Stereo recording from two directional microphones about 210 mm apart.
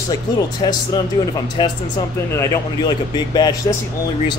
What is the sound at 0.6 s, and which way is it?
A man's voice, 20° left (ahead or behind).